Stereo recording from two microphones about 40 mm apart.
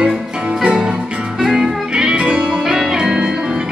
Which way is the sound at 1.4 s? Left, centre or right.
Centre.